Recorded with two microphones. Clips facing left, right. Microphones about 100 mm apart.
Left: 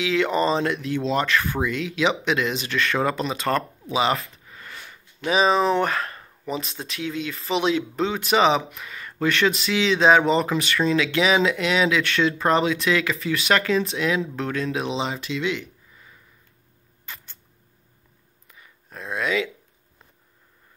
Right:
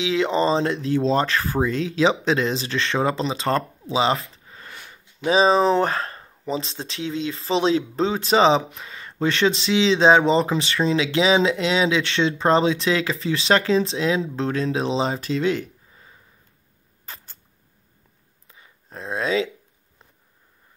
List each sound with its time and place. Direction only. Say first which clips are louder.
0.0 s speech: right 1 dB; 25° right (ahead or behind)
17.0 s rodents: even; 40° right (ahead or behind)
18.5 s a sound: right 2 dB; 25° right (ahead or behind)